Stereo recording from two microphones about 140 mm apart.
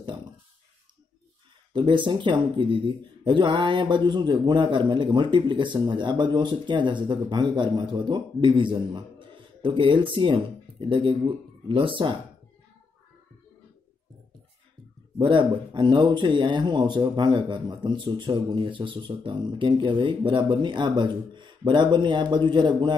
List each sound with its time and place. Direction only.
1.7 s a man's voice: 35° right (ahead or behind)
15.1 s a man's voice: 35° right (ahead or behind)